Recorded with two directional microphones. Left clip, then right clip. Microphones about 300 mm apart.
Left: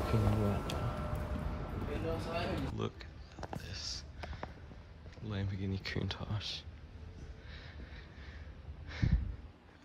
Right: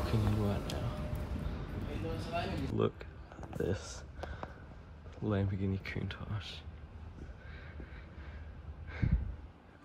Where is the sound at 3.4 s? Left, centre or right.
Centre.